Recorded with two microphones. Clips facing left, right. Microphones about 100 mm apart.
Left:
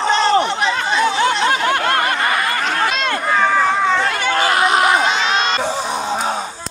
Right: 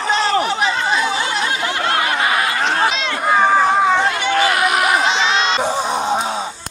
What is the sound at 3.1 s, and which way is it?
Run, 15° right (ahead or behind).